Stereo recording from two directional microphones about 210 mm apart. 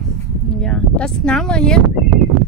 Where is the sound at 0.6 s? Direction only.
5° left (ahead or behind).